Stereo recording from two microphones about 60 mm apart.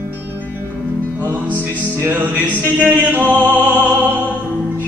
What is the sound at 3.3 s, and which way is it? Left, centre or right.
Music, right.